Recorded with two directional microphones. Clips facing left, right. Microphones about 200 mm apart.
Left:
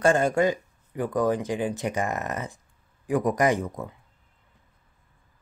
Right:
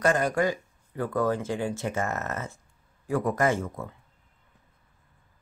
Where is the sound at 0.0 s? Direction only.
25° left (ahead or behind).